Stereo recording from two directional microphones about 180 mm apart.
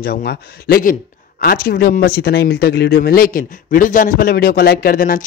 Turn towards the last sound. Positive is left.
turn(degrees=50)  # may be behind; listen again after turning